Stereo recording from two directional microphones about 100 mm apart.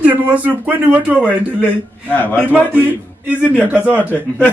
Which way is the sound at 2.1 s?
15° left (ahead or behind).